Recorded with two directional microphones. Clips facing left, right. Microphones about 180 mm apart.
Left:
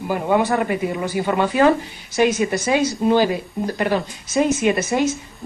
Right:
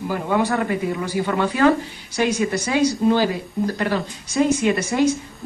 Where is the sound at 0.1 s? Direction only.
20° left (ahead or behind).